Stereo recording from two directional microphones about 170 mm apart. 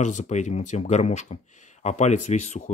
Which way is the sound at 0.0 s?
45° left (ahead or behind).